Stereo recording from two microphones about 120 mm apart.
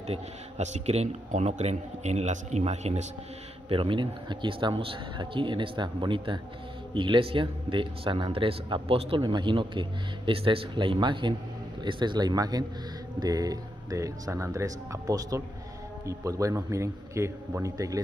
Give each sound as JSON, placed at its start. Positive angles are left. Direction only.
{"t": 0.0, "sound": "speech", "side_deg": -65}
{"t": 3.6, "sound": "a man's voice", "side_deg": -45}
{"t": 9.2, "sound": "a man's voice", "side_deg": -40}